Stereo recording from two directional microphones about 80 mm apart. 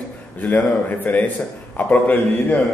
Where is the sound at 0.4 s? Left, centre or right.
Left.